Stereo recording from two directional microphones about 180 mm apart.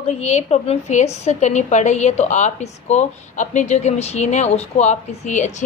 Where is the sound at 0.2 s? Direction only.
40° left (ahead or behind).